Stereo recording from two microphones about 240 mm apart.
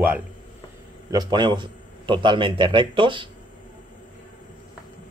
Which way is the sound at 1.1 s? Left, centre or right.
Centre.